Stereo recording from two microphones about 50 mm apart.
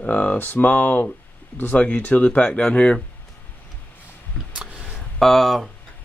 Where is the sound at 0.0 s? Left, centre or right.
Left.